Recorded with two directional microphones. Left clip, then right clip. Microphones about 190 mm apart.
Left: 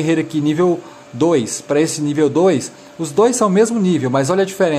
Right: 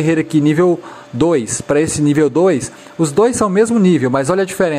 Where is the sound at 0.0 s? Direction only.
20° right (ahead or behind).